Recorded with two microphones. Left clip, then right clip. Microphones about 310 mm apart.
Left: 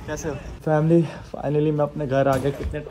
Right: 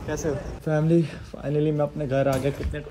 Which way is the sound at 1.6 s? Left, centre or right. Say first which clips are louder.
Left 1 dB; centre.